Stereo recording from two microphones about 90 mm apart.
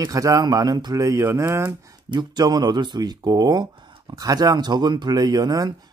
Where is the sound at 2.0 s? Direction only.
55° right (ahead or behind).